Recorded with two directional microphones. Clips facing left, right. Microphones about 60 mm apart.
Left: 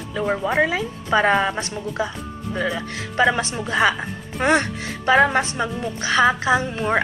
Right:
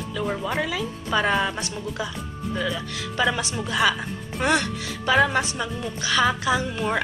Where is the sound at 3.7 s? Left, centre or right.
Left.